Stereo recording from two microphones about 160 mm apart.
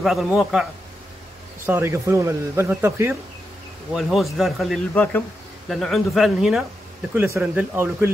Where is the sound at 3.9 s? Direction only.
Centre (ahead or behind).